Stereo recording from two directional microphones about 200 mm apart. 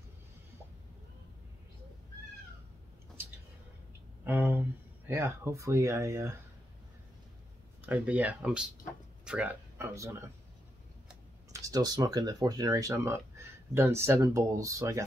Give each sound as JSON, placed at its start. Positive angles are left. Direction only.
{"t": 4.2, "sound": "speech", "side_deg": -10}
{"t": 7.8, "sound": "speech", "side_deg": -5}
{"t": 11.5, "sound": "speech", "side_deg": -15}